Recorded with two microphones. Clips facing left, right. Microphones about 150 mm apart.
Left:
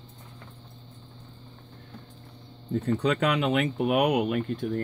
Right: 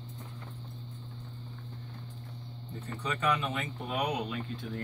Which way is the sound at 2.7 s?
70° left (ahead or behind).